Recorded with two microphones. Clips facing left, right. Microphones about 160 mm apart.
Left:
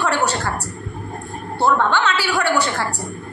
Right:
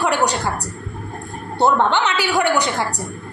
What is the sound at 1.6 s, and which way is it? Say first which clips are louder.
A woman's voice: right 1 dB; 20° right (ahead or behind).